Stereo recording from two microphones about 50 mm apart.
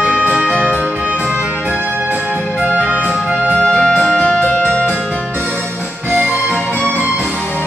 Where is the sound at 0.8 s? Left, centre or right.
Right.